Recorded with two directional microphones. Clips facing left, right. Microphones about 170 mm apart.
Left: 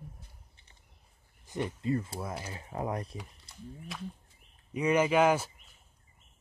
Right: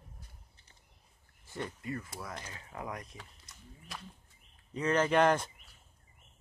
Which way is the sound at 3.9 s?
Centre (ahead or behind).